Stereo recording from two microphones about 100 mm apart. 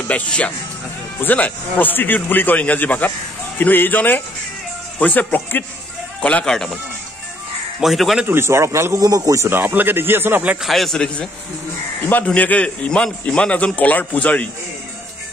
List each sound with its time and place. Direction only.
0.1 s a man's voice: 15° left (ahead or behind)
7.8 s a man's voice: centre (ahead or behind)
8.3 s speech: 25° right (ahead or behind)
9.5 s speech: 20° right (ahead or behind)
10.6 s a man's voice: centre (ahead or behind)
12.3 s a man's voice: 15° left (ahead or behind)